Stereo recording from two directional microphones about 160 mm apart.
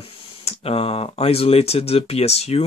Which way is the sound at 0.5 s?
35° left (ahead or behind).